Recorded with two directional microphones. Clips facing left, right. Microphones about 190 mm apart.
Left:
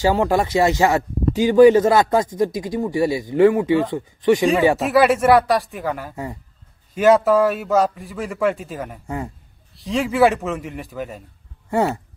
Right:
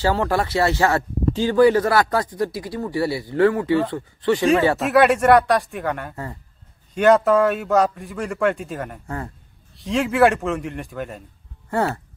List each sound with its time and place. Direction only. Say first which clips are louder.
0.0 s speech: left 3 dB; 15° left (ahead or behind)
4.7 s a man's voice: even; centre (ahead or behind)
11.7 s speech: left 3 dB; 15° left (ahead or behind)